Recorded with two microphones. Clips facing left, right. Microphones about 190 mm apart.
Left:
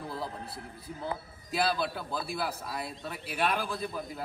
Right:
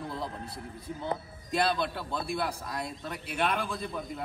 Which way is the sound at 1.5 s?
5° left (ahead or behind).